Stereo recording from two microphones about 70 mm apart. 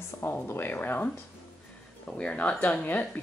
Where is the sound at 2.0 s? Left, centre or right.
Centre.